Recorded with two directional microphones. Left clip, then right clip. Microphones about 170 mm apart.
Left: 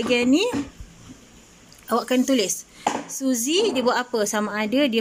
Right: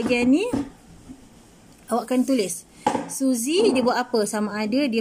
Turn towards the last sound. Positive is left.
turn(degrees=0)  # may be behind; listen again after turning